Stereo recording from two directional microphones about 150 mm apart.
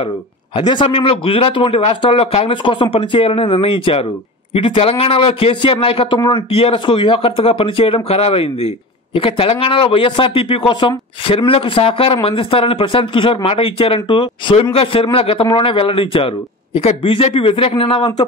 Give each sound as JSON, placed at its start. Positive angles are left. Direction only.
{"t": 0.6, "sound": "a man's voice", "side_deg": 30}